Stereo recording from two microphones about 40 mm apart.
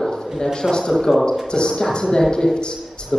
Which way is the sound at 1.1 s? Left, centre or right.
Centre.